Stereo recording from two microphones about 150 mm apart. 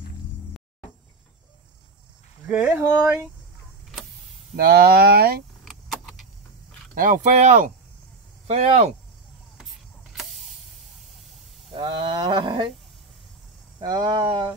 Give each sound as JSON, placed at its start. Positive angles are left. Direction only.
{"t": 2.4, "sound": "speech", "side_deg": -10}
{"t": 4.6, "sound": "speech", "side_deg": -90}
{"t": 5.7, "sound": "vehicle", "side_deg": 0}
{"t": 7.0, "sound": "speech", "side_deg": -55}
{"t": 9.6, "sound": "spray", "side_deg": 0}
{"t": 11.7, "sound": "wild animals", "side_deg": -30}
{"t": 13.7, "sound": "speech", "side_deg": -30}